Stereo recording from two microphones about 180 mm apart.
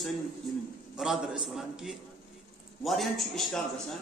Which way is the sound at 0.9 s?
Centre (ahead or behind).